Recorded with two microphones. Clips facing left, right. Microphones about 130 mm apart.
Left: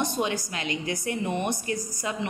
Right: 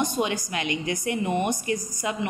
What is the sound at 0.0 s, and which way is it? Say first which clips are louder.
Speech: right 2 dB; 15° right (ahead or behind).